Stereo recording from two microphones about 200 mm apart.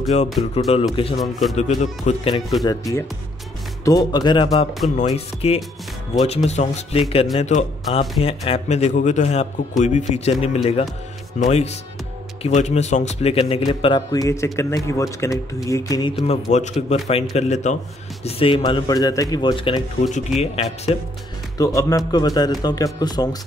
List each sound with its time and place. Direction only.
0.4 s a man's voice: 30° left (ahead or behind)
2.6 s a man's voice: 15° left (ahead or behind)
21.5 s speech: 15° left (ahead or behind)